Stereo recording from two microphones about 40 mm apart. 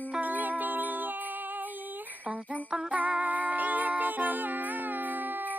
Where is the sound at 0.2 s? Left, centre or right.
Right.